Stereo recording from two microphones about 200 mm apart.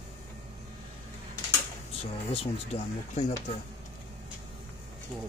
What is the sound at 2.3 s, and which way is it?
Speech, 30° left (ahead or behind).